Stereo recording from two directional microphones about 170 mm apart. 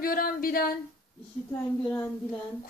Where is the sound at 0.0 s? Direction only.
60° left (ahead or behind).